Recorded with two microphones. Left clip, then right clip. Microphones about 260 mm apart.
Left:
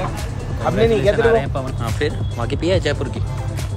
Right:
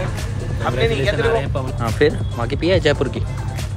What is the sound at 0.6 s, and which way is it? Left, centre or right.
Speech, left.